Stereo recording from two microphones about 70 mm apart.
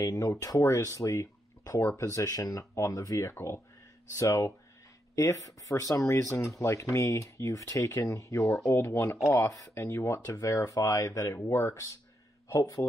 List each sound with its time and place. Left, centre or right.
0.0 s speech: left
1.8 s speech: left
2.1 s speech: left
8.6 s speech: left
9.5 s speech: left
9.8 s speech: left
12.4 s speech: left